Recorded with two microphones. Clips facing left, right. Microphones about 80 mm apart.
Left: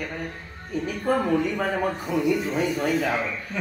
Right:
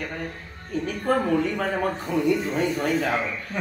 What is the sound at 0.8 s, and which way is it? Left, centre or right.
Speech, centre.